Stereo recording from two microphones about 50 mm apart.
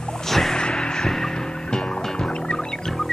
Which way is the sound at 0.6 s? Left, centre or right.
Centre.